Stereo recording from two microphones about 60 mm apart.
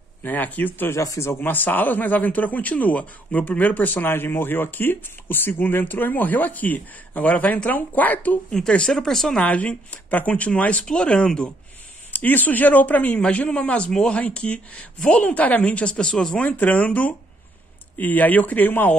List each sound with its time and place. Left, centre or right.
0.2 s speech: left
0.9 s speech: left
1.3 s speech: left
8.5 s speech: centre
9.4 s speech: left
12.1 s speech: left; by 16.4 s centre
16.4 s speech: left